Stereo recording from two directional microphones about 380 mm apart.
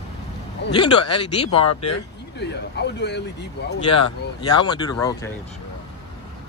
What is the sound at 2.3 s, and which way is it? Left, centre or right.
Speech, left.